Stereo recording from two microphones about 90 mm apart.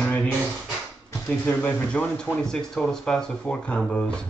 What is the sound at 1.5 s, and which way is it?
Speech, 20° left (ahead or behind).